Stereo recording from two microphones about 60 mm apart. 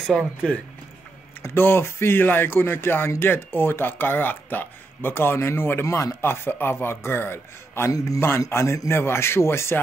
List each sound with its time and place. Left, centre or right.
1.4 s speech: left
5.9 s chopping: left
6.2 s a man's voice: left